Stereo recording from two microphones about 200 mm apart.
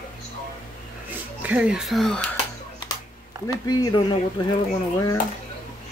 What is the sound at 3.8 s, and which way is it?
Speech, 20° left (ahead or behind).